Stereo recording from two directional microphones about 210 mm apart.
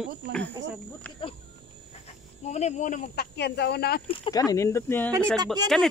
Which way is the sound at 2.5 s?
35° left (ahead or behind).